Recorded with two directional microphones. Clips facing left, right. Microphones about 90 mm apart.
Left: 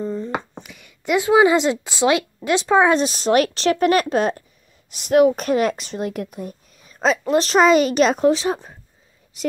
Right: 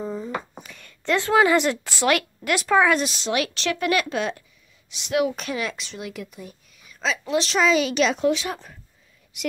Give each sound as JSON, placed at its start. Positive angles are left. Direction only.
{"t": 0.0, "sound": "a sound", "side_deg": -5}
{"t": 0.6, "sound": "speech", "side_deg": 5}
{"t": 3.2, "sound": "speech", "side_deg": 45}